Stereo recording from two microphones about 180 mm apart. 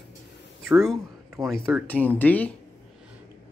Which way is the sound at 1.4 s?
20° right (ahead or behind).